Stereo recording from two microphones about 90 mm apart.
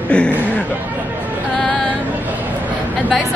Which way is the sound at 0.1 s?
10° left (ahead or behind).